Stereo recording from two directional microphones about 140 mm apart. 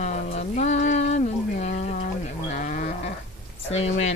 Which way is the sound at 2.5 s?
65° left (ahead or behind).